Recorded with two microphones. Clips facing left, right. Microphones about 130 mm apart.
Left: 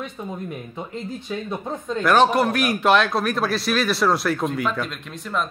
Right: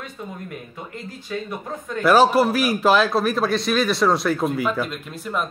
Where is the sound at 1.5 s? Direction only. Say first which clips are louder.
Left 3 dB; 25° left (ahead or behind).